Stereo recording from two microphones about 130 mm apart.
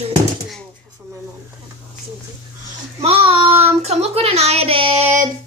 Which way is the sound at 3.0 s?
45° right (ahead or behind).